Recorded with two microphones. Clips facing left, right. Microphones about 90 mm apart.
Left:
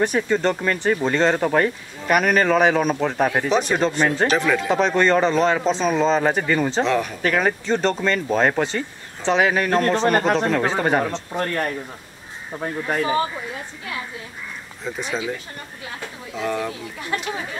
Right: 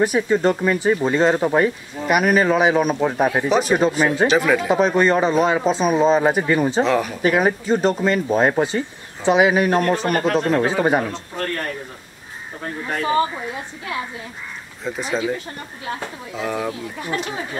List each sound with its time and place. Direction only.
0.0 s speech: 10° right (ahead or behind)
6.8 s speech: centre (ahead or behind)
10.0 s speech: 30° left (ahead or behind)
10.5 s speech: 15° right (ahead or behind)
11.3 s speech: 20° left (ahead or behind)
14.9 s speech: centre (ahead or behind)
16.3 s speech: 5° right (ahead or behind)